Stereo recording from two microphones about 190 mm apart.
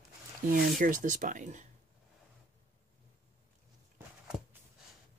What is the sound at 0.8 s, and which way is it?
Speech, 45° right (ahead or behind).